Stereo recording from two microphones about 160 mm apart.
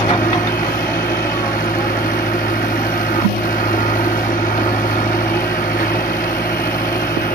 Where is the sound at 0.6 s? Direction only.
65° left (ahead or behind).